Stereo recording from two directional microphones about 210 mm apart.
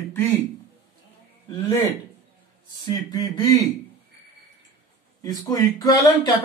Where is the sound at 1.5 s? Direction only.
15° left (ahead or behind).